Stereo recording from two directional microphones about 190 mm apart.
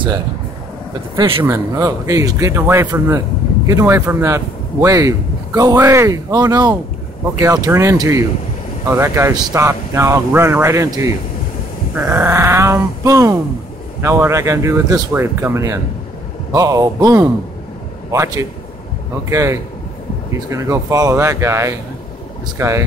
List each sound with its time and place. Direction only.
1.1 s speech: 25° right (ahead or behind)
12.2 s speech: 10° right (ahead or behind)